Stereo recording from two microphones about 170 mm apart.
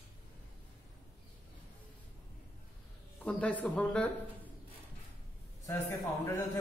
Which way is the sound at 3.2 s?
10° left (ahead or behind).